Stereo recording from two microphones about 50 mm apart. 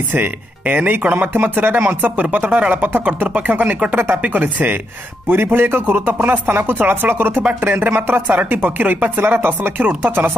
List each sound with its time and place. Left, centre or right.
0.1 s speech: right
5.3 s speech: right
5.9 s speech: right